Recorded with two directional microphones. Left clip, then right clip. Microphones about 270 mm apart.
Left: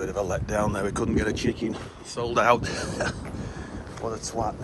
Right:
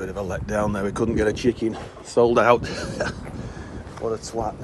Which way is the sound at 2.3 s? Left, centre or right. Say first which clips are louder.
Right 3 dB; centre.